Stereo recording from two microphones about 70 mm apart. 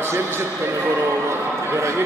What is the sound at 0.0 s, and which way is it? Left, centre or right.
A man's voice, right.